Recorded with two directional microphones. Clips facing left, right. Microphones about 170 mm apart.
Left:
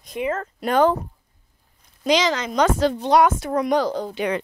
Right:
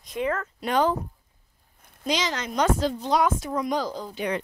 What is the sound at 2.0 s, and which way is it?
A woman's voice, 90° left.